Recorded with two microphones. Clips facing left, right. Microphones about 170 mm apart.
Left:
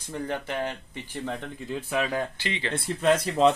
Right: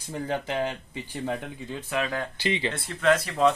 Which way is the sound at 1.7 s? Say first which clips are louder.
Left 2 dB; 10° left (ahead or behind).